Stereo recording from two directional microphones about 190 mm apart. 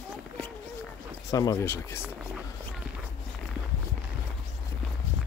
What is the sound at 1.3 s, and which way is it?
Speech, 15° left (ahead or behind).